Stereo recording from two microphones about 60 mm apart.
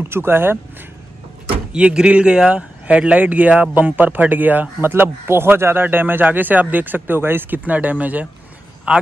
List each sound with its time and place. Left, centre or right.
0.0 s speech: right
1.7 s speech: centre